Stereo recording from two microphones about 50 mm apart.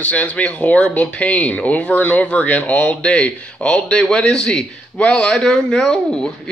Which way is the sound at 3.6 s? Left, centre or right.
Centre.